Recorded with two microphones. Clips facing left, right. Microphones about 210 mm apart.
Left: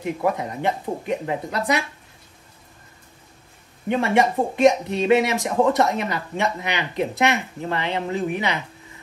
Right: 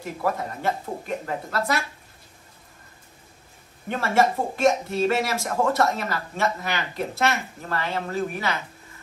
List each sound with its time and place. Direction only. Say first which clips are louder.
0.2 s speech: left 1 dB; 15° left (ahead or behind)
3.9 s speech: left 3 dB; 15° left (ahead or behind)